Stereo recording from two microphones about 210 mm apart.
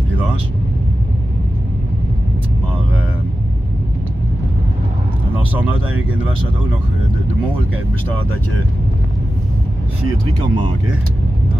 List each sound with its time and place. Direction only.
10.4 s speech: 20° right (ahead or behind)